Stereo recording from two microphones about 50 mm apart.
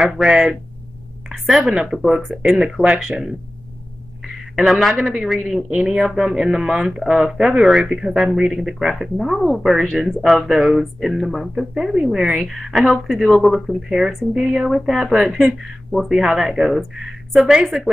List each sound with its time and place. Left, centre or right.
0.0 s speech: centre
1.3 s speech: centre
4.6 s speech: centre
13.7 s a woman's voice: centre